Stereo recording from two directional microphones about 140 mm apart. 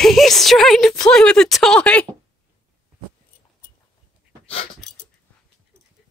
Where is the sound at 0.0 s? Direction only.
Centre (ahead or behind).